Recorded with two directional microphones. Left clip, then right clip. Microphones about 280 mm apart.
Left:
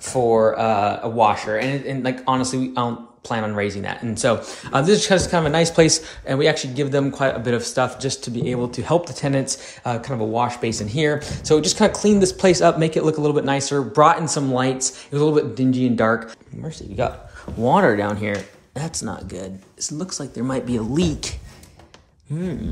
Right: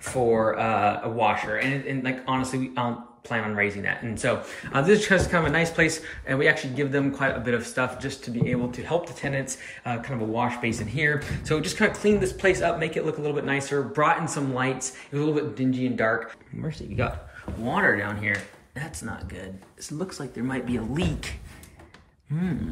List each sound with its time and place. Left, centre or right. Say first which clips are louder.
0.1 s speech: left 6 dB; centre
16.6 s speech: left 6 dB; centre